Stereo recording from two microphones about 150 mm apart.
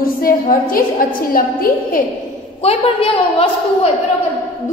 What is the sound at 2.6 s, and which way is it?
Speech, 40° left (ahead or behind).